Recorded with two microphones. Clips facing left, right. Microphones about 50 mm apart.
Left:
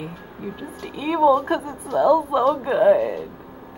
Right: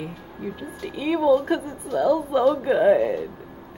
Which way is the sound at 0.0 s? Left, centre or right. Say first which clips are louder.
Even; centre.